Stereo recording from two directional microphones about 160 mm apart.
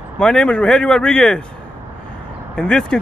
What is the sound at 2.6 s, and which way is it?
Speech, 5° left (ahead or behind).